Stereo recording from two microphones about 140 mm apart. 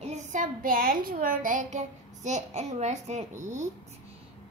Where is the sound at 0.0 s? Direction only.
60° right (ahead or behind).